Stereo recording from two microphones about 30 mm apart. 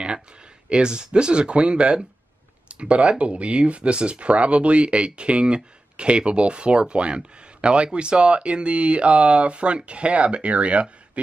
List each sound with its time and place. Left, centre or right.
0.7 s speech: right